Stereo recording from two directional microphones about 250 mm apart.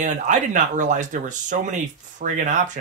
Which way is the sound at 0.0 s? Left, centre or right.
Right.